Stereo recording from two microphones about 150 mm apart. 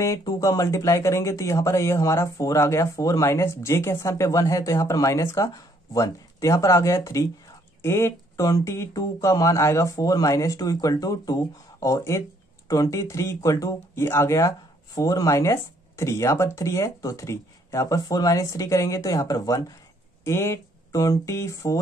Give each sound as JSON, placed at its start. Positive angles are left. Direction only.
{"t": 0.0, "sound": "speech", "side_deg": 25}